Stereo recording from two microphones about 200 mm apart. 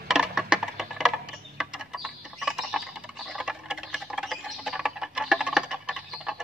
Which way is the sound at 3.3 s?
5° right (ahead or behind).